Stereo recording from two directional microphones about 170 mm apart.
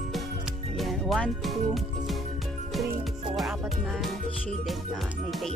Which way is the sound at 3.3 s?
5° right (ahead or behind).